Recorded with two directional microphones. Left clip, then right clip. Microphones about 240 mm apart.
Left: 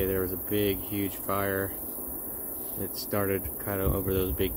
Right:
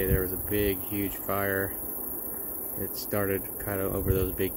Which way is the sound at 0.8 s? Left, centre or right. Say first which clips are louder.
Even; centre.